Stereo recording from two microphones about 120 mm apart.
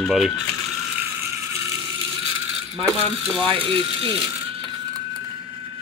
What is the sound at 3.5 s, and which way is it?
Speech, 50° right (ahead or behind).